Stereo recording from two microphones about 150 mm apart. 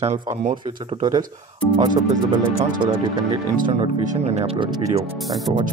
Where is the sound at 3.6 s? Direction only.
35° right (ahead or behind).